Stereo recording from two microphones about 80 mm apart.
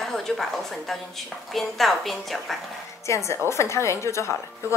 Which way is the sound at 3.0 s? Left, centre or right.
Left.